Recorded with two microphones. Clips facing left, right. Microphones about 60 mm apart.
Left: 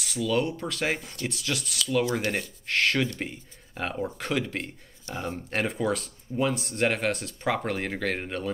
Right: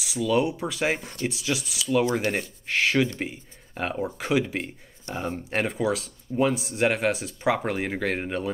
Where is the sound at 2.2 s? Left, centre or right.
Right.